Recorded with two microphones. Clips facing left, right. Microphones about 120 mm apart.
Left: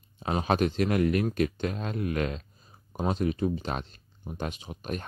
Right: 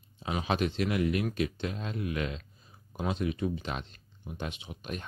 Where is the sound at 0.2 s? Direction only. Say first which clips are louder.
Left 4 dB; 45° left (ahead or behind).